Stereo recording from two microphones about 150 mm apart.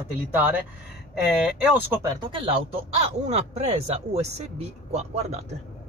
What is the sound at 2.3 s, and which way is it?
Speech, 35° right (ahead or behind).